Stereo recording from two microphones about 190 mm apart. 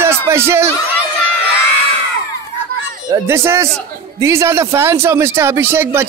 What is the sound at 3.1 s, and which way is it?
A man's voice, 15° right (ahead or behind).